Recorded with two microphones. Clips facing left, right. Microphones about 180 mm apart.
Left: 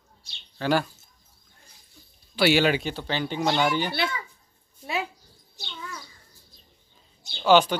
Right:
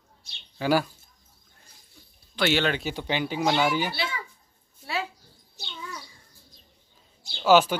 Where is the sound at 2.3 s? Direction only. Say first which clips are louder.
Left 4 dB; 10° left (ahead or behind).